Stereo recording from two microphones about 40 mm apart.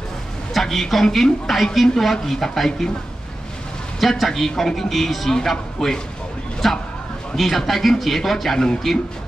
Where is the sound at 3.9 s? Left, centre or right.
Centre.